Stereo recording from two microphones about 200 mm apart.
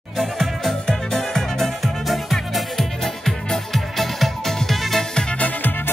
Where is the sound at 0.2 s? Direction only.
Centre (ahead or behind).